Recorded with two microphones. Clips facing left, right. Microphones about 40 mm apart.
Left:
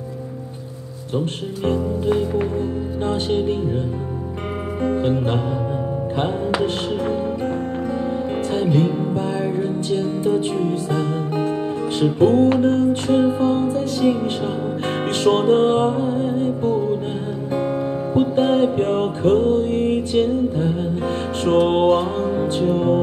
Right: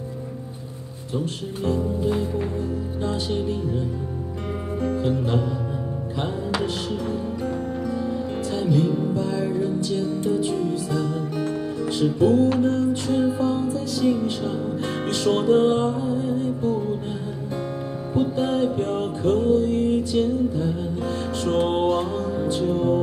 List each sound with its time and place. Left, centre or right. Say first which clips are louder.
1.1 s speech: left 4 dB; left
4.8 s speech: left 4 dB; left
6.6 s music: left 5 dB; left
18.1 s music: left 5 dB; left